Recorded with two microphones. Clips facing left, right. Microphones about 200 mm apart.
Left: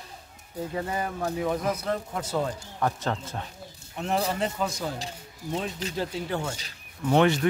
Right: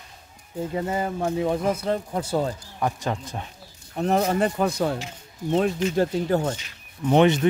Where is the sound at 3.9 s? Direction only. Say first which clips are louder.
Right 6 dB; 45° right (ahead or behind).